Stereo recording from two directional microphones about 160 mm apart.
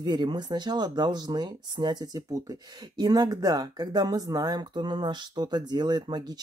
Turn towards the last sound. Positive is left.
turn(degrees=-25)  # may be behind; listen again after turning